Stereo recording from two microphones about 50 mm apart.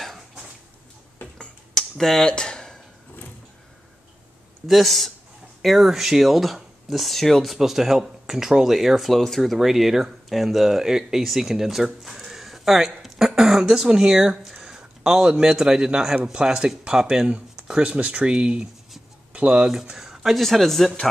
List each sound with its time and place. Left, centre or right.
1.2 s tick-tock: left
1.7 s computer keyboard: centre
4.6 s speech: centre
7.5 s speech: centre
9.1 s a man's voice: centre; by 19.7 s right
19.7 s speech: centre
20.3 s speech: centre